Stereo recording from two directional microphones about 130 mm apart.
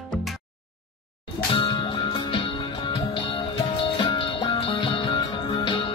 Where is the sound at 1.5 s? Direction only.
35° left (ahead or behind).